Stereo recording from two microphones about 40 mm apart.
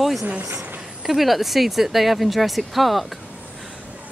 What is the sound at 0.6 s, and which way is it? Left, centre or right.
Speech, centre.